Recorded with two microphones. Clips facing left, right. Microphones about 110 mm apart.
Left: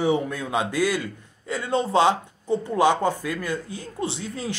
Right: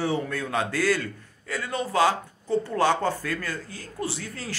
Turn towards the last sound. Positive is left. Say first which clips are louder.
# left 4 dB
turn(degrees=20)  # may be behind; listen again after turning